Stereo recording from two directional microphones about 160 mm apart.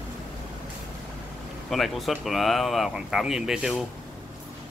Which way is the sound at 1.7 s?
Centre (ahead or behind).